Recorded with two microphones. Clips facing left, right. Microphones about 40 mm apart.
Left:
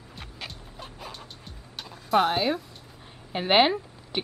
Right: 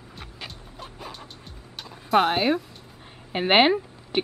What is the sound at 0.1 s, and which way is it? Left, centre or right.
Music, centre.